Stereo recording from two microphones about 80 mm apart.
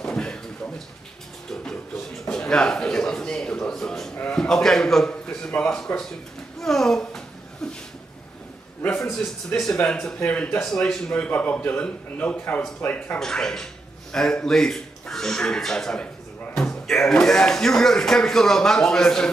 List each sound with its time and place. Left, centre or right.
0.0 s a sound: centre
4.2 s a man's voice: centre
6.6 s a sound: centre
9.0 s a man's voice: centre
9.5 s speech: left
9.8 s a man's voice: centre
10.1 s a man's voice: centre
13.2 s a man's voice: centre